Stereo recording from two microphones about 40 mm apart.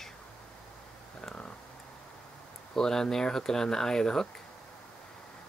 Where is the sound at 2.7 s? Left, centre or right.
Centre.